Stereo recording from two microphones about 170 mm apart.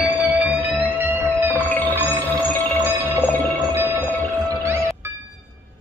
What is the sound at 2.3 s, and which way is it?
Music, 10° left (ahead or behind).